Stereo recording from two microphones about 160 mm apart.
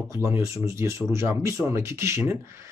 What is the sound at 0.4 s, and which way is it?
Speech, 20° right (ahead or behind).